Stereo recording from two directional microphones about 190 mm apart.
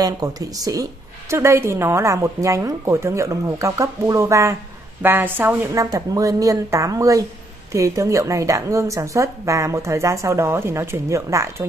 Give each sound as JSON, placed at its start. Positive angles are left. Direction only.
{"t": 0.0, "sound": "speech", "side_deg": -20}